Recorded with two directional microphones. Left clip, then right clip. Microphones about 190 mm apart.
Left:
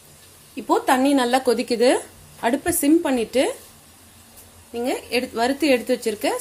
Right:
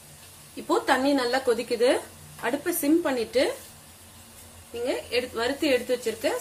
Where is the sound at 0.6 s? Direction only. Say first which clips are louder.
Left 5 dB; 30° left (ahead or behind).